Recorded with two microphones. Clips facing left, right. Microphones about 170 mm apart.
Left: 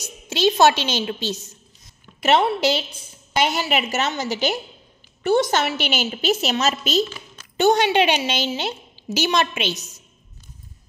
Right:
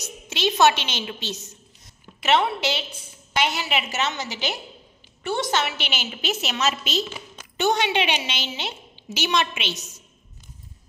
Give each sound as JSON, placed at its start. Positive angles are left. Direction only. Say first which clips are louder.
{"t": 0.0, "sound": "a woman's voice", "louder": "left 6 dB", "side_deg": 35}